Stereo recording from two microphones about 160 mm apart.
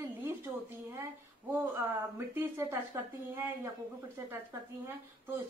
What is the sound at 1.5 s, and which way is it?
Speech, 15° right (ahead or behind).